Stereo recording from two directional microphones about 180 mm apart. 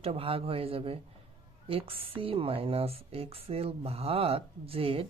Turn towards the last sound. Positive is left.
turn(degrees=-30)  # may be behind; listen again after turning